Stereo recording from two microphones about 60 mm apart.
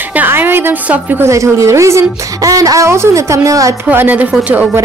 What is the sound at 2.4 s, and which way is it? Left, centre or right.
Speech, right.